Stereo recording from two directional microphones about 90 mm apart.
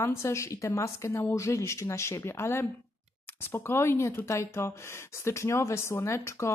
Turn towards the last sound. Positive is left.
turn(degrees=35)  # may be behind; listen again after turning